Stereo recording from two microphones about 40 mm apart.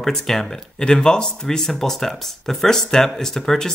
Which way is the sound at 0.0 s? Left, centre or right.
Centre.